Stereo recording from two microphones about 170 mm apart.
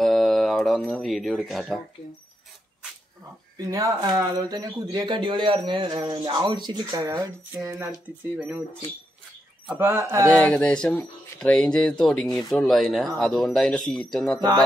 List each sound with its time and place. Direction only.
0.0 s music: centre (ahead or behind)
3.5 s speech: 20° right (ahead or behind)
9.7 s speech: 10° right (ahead or behind)
10.3 s speech: 5° left (ahead or behind)